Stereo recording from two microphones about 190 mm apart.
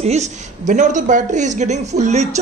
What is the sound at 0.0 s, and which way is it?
Speech, 35° right (ahead or behind).